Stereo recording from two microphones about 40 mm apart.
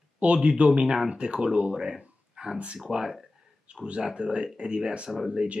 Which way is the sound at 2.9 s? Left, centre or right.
Centre.